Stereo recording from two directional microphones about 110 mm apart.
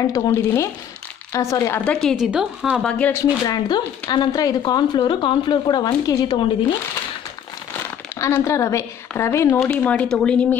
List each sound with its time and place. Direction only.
0.0 s a woman's voice: 30° left (ahead or behind)
1.9 s a woman's voice: 5° left (ahead or behind)
2.8 s speech: 10° left (ahead or behind)
3.4 s speech: 40° left (ahead or behind)
8.2 s a woman's voice: 25° left (ahead or behind)
9.7 s speech: 10° left (ahead or behind)